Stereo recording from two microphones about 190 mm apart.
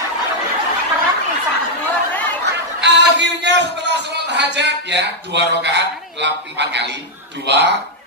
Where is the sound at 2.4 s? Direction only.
65° right (ahead or behind).